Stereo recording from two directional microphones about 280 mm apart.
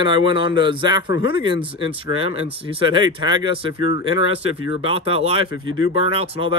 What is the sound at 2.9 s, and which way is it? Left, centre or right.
A man's voice, centre.